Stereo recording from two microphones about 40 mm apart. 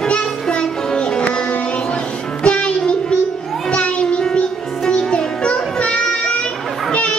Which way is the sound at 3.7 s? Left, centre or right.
Left.